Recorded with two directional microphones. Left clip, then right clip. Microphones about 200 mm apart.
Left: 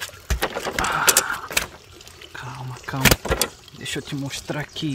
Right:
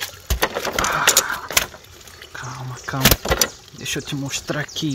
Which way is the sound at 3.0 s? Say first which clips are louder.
Right 1 dB; 15° right (ahead or behind).